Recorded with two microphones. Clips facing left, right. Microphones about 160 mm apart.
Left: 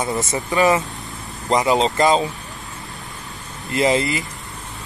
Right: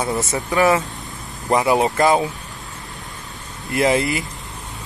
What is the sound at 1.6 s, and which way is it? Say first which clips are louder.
Speech: even; 10° right (ahead or behind).